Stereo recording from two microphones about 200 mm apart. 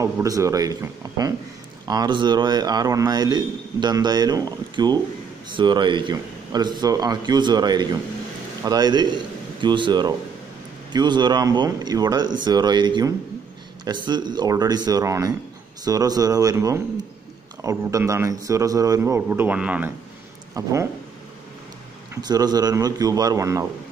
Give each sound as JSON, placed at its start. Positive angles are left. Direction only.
{"t": 0.0, "sound": "a man's voice", "side_deg": -15}
{"t": 22.1, "sound": "a man's voice", "side_deg": -20}